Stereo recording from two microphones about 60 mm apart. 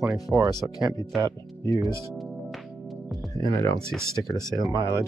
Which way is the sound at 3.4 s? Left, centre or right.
Left.